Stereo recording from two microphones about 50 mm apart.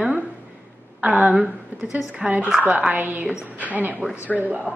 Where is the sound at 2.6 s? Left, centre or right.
Right.